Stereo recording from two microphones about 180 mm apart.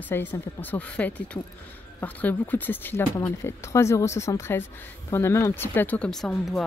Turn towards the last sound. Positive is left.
turn(degrees=0)  # may be behind; listen again after turning